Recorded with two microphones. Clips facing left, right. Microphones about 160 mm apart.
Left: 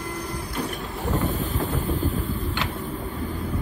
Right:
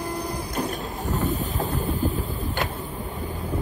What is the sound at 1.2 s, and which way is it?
Boat, 40° right (ahead or behind).